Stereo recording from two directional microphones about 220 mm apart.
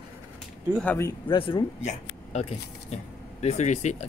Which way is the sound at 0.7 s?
10° left (ahead or behind).